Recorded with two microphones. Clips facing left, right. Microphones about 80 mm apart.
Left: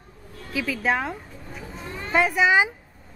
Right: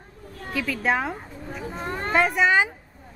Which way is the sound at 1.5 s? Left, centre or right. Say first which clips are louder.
Right 6 dB; right.